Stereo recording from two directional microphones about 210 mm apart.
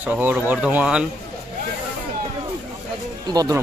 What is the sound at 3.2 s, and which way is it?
Speech, 20° right (ahead or behind).